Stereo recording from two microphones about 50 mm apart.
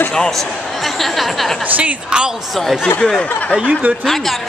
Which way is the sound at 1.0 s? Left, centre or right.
Centre.